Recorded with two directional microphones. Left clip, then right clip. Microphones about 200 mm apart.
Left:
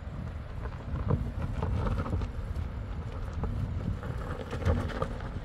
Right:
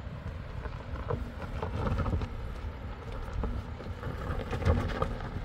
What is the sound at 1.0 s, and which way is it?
Vehicle, centre (ahead or behind).